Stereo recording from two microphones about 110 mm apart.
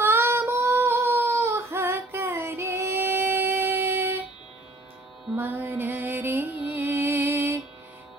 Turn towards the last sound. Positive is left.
turn(degrees=-20)  # may be behind; listen again after turning